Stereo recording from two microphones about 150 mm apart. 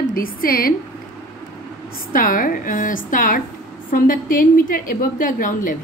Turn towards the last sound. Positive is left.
turn(degrees=65)  # may be behind; listen again after turning